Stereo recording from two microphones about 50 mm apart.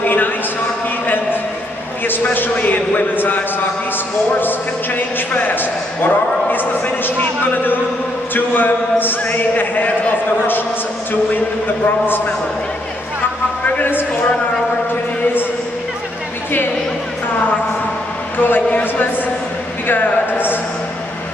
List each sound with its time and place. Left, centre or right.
1.0 s a sound: left
2.3 s a man's voice: left
4.4 s a man's voice: left
18.4 s a man's voice: left